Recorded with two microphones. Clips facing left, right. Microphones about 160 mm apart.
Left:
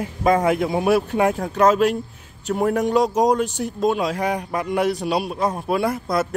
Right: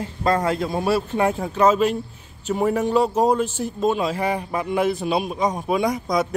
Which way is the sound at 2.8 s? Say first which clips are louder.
Left 1 dB; 15° left (ahead or behind).